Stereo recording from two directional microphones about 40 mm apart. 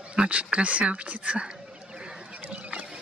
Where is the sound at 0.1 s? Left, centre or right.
Right.